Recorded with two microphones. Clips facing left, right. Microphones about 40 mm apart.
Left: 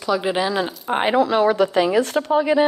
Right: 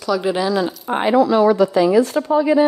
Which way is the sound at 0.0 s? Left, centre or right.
Left.